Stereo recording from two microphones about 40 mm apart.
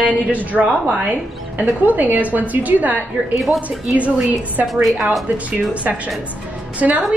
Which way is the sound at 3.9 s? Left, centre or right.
Right.